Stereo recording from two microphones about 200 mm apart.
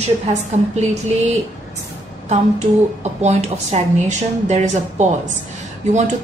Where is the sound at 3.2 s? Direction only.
35° right (ahead or behind).